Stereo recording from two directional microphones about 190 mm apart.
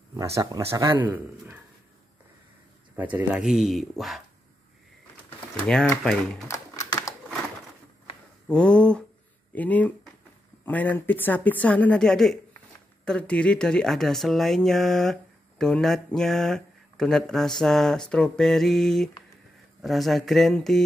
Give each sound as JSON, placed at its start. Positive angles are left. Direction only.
{"t": 0.1, "sound": "a man's voice", "side_deg": -15}
{"t": 3.0, "sound": "speech", "side_deg": -10}
{"t": 5.6, "sound": "speech", "side_deg": 5}
{"t": 6.4, "sound": "typing", "side_deg": 15}
{"t": 8.5, "sound": "speech", "side_deg": 5}